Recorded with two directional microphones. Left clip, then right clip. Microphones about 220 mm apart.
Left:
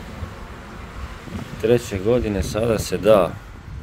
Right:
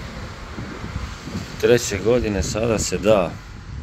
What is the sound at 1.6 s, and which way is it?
Speech, centre (ahead or behind).